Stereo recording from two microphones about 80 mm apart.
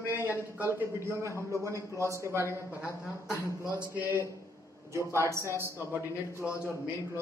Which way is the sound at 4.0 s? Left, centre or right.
Right.